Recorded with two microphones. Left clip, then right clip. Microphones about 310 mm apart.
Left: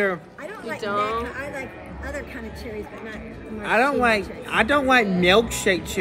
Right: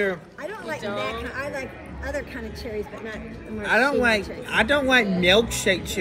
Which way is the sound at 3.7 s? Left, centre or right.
Left.